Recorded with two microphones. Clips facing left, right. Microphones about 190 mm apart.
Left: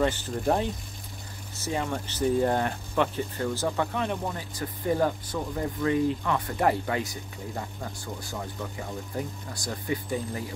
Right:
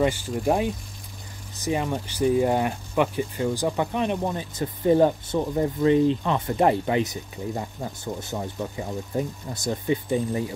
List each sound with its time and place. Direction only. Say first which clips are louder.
0.0 s speech: right 3 dB; 10° right (ahead or behind)